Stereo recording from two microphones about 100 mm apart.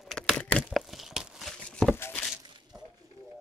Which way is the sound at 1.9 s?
20° left (ahead or behind).